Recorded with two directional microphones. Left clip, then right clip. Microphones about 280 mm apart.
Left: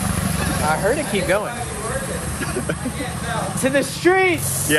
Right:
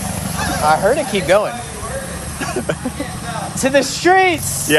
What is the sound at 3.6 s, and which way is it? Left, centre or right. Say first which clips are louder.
Speech: right 5 dB; right.